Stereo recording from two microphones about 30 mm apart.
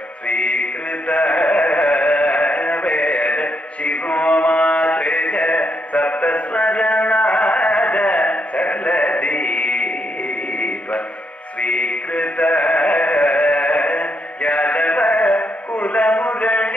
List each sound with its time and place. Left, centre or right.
0.3 s music: left
1.8 s music: left
2.0 s music: left
4.8 s mantra: left
11.6 s music: left
13.4 s music: left
13.7 s music: left